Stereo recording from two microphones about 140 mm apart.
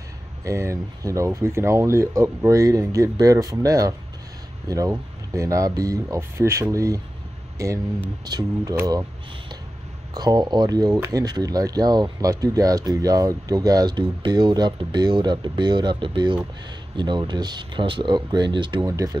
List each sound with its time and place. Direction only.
0.5 s speech: 20° right (ahead or behind)
10.1 s speech: 30° right (ahead or behind)
18.9 s speech: 25° right (ahead or behind)